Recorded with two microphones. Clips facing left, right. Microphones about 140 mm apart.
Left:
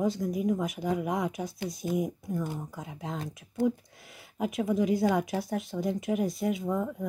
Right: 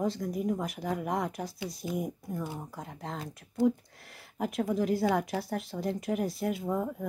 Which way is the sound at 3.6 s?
55° left (ahead or behind).